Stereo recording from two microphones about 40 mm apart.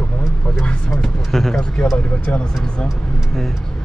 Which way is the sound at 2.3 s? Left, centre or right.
Left.